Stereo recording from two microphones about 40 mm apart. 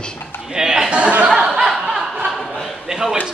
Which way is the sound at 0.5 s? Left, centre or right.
Centre.